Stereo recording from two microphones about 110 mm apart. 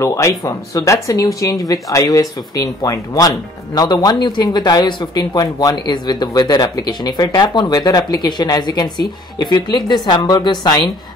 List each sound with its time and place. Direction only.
0.0 s speech: 30° left (ahead or behind)